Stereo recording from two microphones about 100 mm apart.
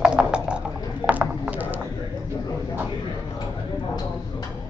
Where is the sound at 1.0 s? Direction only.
15° right (ahead or behind).